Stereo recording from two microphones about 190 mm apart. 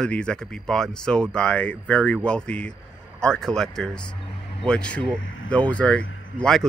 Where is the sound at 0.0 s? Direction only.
5° left (ahead or behind).